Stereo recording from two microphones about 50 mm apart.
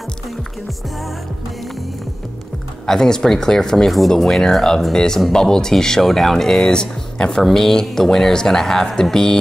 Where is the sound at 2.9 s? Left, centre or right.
Centre.